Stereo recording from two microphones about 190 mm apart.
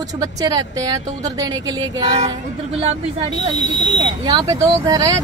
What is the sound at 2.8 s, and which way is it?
Speech, 30° right (ahead or behind).